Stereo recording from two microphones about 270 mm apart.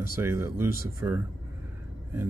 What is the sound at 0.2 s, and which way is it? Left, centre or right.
Speech, centre.